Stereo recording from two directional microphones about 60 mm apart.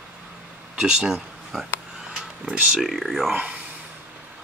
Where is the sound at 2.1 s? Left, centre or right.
Centre.